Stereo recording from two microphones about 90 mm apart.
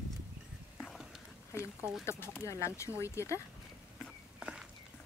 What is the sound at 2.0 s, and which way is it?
Speech, 30° left (ahead or behind).